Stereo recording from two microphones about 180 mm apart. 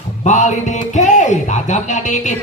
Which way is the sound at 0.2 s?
40° left (ahead or behind).